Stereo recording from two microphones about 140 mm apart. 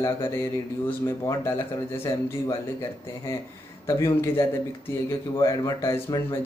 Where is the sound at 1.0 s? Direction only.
20° left (ahead or behind).